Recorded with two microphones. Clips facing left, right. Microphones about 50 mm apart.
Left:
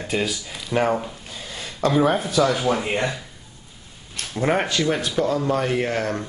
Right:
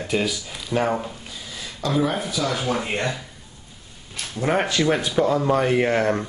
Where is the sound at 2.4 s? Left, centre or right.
Left.